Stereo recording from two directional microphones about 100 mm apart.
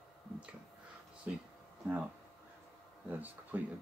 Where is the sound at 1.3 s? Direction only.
10° right (ahead or behind).